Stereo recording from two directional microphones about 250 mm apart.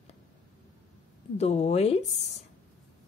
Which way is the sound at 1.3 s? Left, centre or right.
Left.